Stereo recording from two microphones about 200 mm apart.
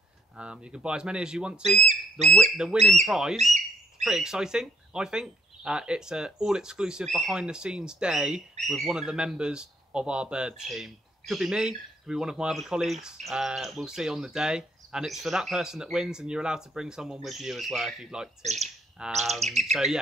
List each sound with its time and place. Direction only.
0.4 s speech: 5° right (ahead or behind)
1.8 s speech: 35° right (ahead or behind)
2.5 s speech: 5° right (ahead or behind)